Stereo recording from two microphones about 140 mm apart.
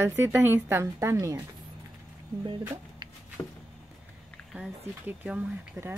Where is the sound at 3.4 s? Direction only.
20° left (ahead or behind).